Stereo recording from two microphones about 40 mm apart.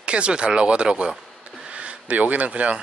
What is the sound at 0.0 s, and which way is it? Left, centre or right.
Speech, right.